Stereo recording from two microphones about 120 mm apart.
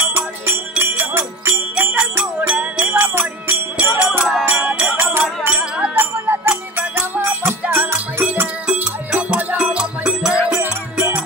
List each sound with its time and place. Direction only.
0.0 s music: 15° right (ahead or behind)